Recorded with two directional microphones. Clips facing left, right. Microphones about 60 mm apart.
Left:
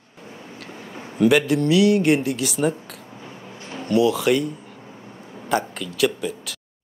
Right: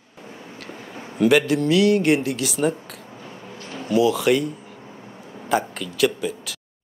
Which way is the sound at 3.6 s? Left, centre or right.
Centre.